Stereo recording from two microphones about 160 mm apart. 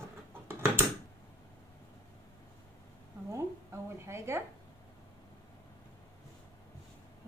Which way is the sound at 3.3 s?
15° right (ahead or behind).